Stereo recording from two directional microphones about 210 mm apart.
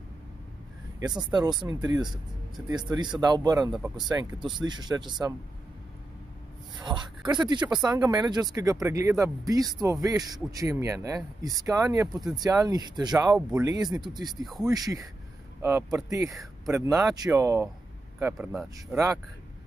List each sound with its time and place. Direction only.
1.6 s speech: 20° right (ahead or behind)
6.8 s speech: 20° right (ahead or behind)
14.4 s speech: centre (ahead or behind)
14.7 s speech: 15° right (ahead or behind)